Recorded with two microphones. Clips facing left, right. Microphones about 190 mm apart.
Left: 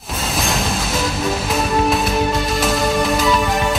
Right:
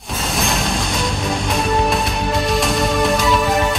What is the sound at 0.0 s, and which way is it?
Music, centre (ahead or behind).